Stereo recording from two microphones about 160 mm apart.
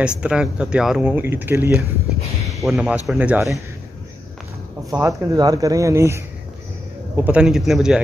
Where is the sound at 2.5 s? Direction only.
Centre (ahead or behind).